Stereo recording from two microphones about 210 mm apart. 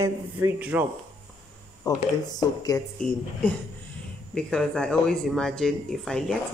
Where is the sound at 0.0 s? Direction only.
10° right (ahead or behind).